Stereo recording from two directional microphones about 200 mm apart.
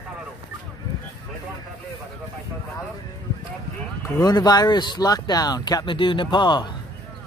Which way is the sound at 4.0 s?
20° left (ahead or behind).